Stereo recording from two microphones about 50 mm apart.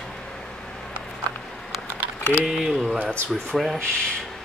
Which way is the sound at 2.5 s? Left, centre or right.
Centre.